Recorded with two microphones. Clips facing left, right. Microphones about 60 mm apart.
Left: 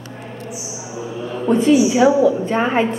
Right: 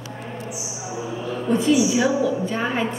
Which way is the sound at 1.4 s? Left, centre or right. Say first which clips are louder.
Left 5 dB; left.